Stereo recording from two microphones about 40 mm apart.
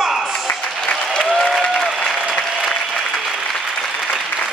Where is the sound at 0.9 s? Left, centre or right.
Left.